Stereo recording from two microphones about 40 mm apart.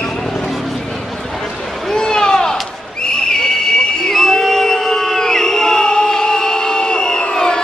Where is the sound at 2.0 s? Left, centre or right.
Centre.